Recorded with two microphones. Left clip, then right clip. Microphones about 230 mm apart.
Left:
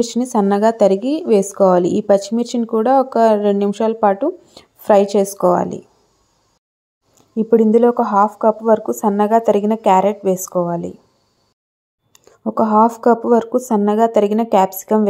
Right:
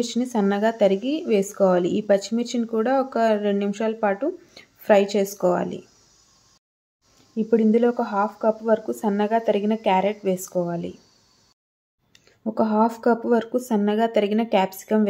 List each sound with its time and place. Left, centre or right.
0.0 s speech: left
7.3 s speech: centre
12.1 s speech: centre